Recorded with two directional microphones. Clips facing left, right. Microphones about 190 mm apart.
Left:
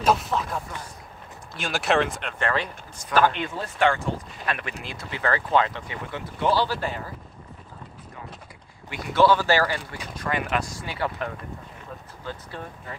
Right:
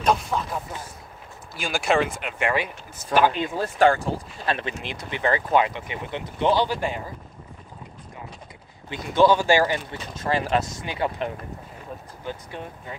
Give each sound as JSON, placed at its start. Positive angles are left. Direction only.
{"t": 0.0, "sound": "speech", "side_deg": 5}
{"t": 3.5, "sound": "speech", "side_deg": -35}
{"t": 8.9, "sound": "speech", "side_deg": -15}